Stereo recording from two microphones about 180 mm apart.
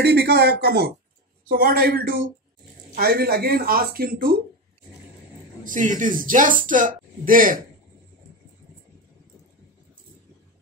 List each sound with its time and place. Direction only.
0.0 s speech: 65° right (ahead or behind)
5.6 s speech: 45° right (ahead or behind)